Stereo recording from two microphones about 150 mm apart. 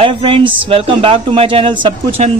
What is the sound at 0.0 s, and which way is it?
Speech, 35° right (ahead or behind).